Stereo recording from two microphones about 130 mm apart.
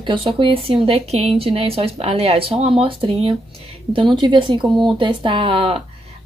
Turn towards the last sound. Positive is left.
turn(degrees=-45)  # may be behind; listen again after turning